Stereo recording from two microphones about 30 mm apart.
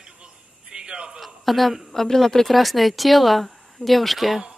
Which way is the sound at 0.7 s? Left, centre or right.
Right.